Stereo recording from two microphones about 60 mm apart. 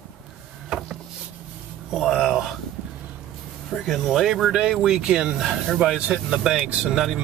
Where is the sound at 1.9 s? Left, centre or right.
Centre.